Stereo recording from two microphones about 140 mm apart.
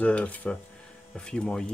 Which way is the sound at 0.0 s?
10° left (ahead or behind).